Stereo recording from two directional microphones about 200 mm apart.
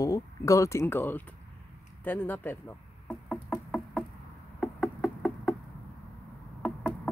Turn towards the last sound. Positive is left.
turn(degrees=5)  # may be behind; listen again after turning